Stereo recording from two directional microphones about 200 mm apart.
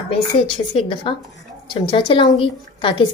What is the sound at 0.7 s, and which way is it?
A woman's voice, 25° left (ahead or behind).